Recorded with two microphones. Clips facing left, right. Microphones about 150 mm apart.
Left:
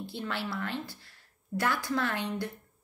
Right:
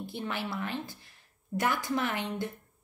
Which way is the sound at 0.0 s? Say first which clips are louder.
Even; 15° right (ahead or behind).